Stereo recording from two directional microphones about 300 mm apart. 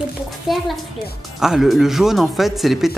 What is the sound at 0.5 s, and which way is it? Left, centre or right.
Speech, centre.